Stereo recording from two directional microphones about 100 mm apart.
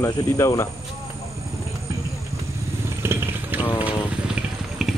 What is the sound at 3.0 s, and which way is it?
Vehicle, 20° right (ahead or behind).